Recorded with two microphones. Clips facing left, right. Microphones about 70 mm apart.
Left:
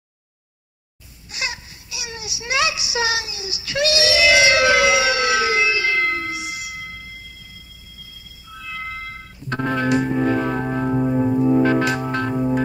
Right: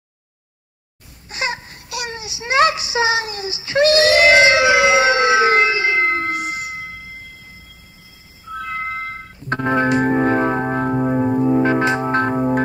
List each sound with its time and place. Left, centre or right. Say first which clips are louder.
1.3 s baby cry: right 5 dB; right
1.9 s child singing: right 7 dB; right
2.1 s child singing: right 6 dB; right
3.3 s speech: right 6 dB; right
3.5 s a sound: right 6 dB; right
4.6 s siren: right 2 dB; right
5.9 s a sound: right 3 dB; right
6.2 s a sound: right 5 dB; right
8.5 s organ: right 6 dB; right
10.8 s music: left 2 dB; right
11.5 s music: right 1 dB; right